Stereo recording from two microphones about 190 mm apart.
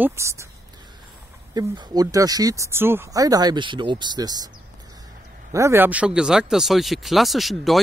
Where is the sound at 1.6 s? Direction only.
20° right (ahead or behind).